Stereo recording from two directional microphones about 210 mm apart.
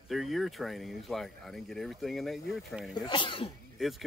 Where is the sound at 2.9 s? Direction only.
25° left (ahead or behind).